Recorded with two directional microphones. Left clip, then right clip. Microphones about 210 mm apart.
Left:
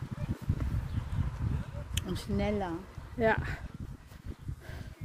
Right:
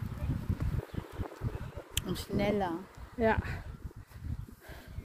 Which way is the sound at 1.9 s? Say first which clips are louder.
Right 1 dB; 40° right (ahead or behind).